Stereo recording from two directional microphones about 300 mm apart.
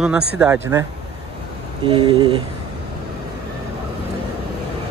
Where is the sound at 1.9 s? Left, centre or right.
Centre.